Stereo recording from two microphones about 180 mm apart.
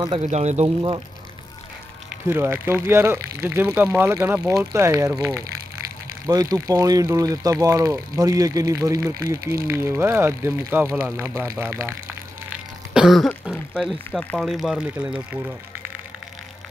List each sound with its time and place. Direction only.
0.0 s speech: 30° right (ahead or behind)
2.2 s speech: 10° right (ahead or behind)
6.2 s speech: 20° right (ahead or behind)
12.9 s speech: centre (ahead or behind)